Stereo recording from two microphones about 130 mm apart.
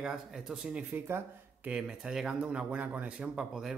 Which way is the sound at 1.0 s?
15° right (ahead or behind).